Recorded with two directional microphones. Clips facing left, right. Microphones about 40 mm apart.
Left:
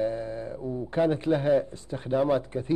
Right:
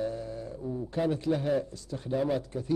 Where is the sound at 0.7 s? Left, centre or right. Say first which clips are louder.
Left 1 dB; left.